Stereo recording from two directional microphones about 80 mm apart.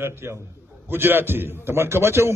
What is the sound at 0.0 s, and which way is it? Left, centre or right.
A man's voice, right.